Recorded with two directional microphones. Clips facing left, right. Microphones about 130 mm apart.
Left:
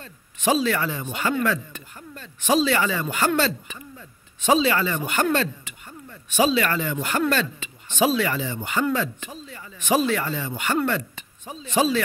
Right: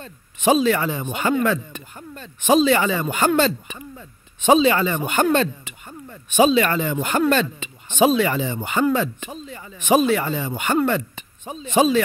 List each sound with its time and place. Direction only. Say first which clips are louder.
0.0 s speech: right 4 dB; 20° right (ahead or behind)